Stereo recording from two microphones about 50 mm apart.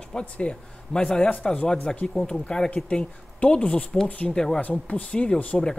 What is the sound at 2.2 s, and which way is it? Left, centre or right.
Speech, left.